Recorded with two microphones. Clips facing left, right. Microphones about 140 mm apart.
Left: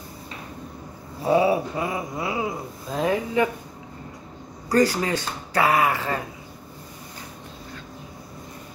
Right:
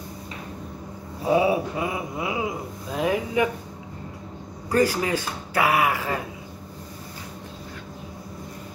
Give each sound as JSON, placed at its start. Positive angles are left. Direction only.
{"t": 1.2, "sound": "speech", "side_deg": -15}
{"t": 4.7, "sound": "speech", "side_deg": -10}